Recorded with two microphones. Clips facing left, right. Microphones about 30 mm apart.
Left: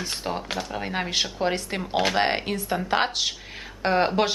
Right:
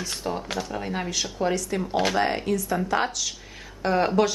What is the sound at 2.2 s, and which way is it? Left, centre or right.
Speech, left.